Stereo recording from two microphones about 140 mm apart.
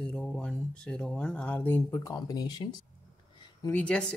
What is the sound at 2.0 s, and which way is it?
Speech, 25° left (ahead or behind).